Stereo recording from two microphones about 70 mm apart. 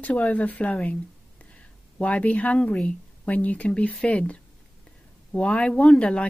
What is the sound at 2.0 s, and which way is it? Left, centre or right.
Speech, centre.